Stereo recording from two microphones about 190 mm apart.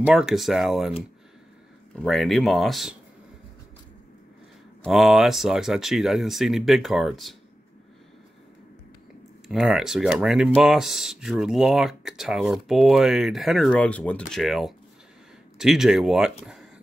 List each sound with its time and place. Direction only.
0.0 s speech: centre (ahead or behind)
2.0 s speech: centre (ahead or behind)
4.8 s speech: centre (ahead or behind)
9.5 s speech: 5° right (ahead or behind)